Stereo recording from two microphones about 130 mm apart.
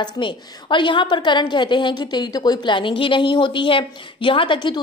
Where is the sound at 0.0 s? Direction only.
40° left (ahead or behind).